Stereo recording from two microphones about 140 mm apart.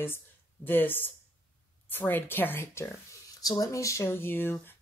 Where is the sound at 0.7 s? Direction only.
15° left (ahead or behind).